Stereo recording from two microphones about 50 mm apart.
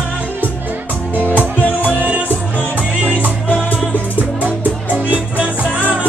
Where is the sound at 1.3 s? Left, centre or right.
Left.